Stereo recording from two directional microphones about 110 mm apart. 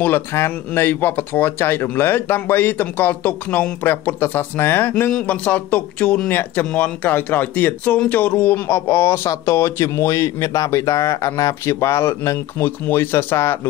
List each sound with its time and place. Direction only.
0.0 s speech: 20° left (ahead or behind)